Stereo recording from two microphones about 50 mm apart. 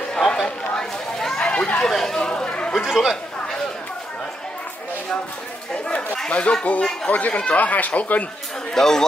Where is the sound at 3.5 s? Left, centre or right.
Centre.